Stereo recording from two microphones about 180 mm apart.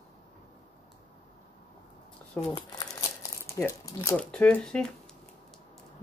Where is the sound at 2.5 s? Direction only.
20° left (ahead or behind); by 4.9 s 5° left (ahead or behind).